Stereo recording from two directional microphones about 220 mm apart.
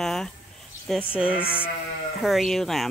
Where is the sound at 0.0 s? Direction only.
Centre (ahead or behind).